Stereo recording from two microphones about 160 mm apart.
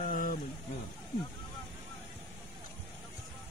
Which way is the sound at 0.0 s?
60° left (ahead or behind).